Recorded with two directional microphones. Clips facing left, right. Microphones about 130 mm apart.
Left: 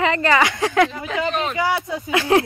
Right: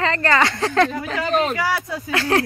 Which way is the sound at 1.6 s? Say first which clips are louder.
Left 2 dB; 20° left (ahead or behind).